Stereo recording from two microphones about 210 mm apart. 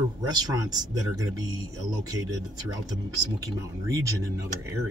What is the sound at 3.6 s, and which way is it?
Speech, 15° right (ahead or behind).